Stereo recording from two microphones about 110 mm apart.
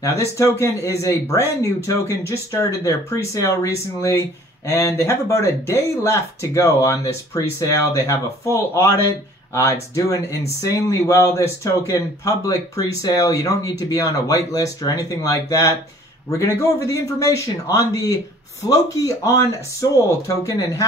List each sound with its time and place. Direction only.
0.0 s speech: 25° left (ahead or behind)